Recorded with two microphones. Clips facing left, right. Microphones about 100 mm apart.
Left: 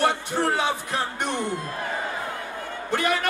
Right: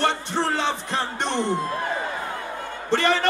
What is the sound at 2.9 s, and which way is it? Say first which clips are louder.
Music: right 3 dB; 10° left (ahead or behind).